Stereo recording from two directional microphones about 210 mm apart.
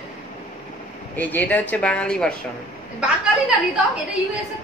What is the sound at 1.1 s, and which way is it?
Speech, 10° left (ahead or behind).